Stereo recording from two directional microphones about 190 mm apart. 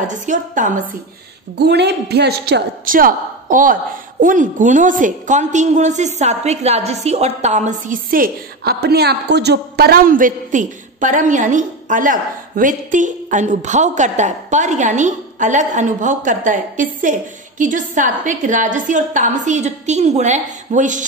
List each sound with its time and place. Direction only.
0.0 s a woman's voice: 40° right (ahead or behind)
1.6 s a woman's voice: 60° right (ahead or behind); by 21.0 s 40° right (ahead or behind)